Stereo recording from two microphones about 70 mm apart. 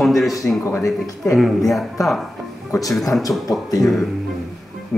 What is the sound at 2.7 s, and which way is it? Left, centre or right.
Speech, left.